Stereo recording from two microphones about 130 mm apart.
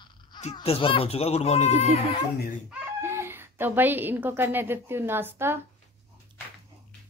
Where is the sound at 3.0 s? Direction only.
20° right (ahead or behind).